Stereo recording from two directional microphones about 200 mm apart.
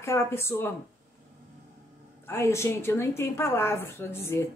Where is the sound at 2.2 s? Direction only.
10° left (ahead or behind).